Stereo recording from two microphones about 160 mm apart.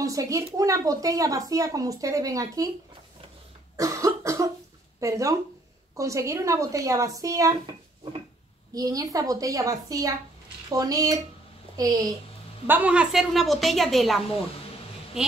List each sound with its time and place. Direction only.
0.0 s speech: 20° right (ahead or behind)
3.7 s cough: 20° right (ahead or behind)
5.0 s speech: 20° right (ahead or behind)
8.7 s a woman's voice: 20° right (ahead or behind)
12.6 s a woman's voice: 10° right (ahead or behind)